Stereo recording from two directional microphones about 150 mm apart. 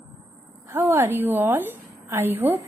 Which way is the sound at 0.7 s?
15° right (ahead or behind).